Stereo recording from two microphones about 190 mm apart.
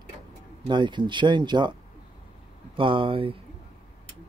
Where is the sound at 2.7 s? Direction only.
25° right (ahead or behind).